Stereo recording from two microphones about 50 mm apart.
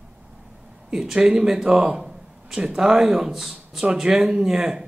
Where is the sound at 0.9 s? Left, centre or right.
Centre.